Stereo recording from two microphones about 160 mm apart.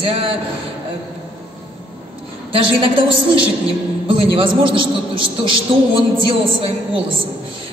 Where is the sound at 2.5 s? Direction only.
35° right (ahead or behind).